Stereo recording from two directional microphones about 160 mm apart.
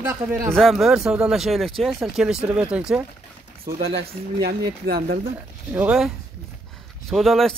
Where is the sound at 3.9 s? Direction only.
75° right (ahead or behind).